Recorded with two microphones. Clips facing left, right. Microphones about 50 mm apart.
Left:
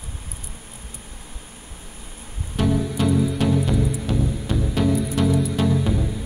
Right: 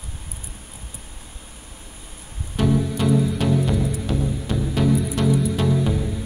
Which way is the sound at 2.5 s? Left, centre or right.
Centre.